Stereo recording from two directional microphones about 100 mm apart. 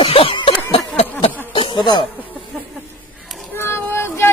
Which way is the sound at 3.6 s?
25° left (ahead or behind).